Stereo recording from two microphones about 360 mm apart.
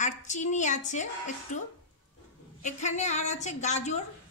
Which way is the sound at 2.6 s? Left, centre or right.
Centre.